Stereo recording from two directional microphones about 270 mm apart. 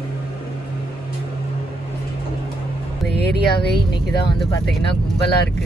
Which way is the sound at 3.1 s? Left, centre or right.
Left.